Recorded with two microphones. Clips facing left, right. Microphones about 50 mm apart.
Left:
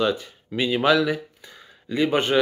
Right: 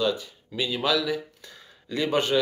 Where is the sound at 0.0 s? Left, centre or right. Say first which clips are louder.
Left 3 dB; left.